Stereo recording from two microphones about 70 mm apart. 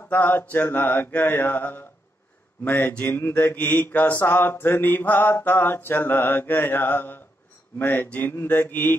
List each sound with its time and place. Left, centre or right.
0.1 s mantra: left